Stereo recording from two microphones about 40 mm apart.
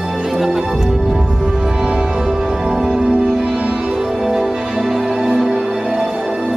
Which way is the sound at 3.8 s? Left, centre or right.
Centre.